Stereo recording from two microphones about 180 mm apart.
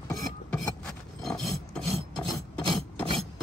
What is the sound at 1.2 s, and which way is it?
Filing, 5° left (ahead or behind).